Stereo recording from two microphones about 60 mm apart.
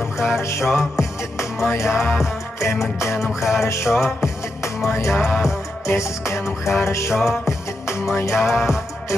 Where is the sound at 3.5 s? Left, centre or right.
Left.